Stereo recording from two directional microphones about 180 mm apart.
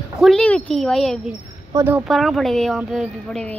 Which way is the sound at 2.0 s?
Centre (ahead or behind).